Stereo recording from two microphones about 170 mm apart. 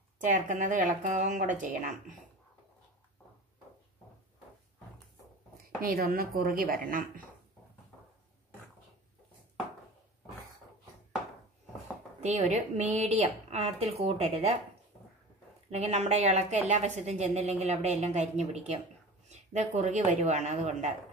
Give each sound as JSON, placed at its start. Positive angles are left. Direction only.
{"t": 0.2, "sound": "speech", "side_deg": -50}
{"t": 5.8, "sound": "speech", "side_deg": -60}
{"t": 12.2, "sound": "a woman's voice", "side_deg": -40}
{"t": 15.7, "sound": "a woman's voice", "side_deg": -40}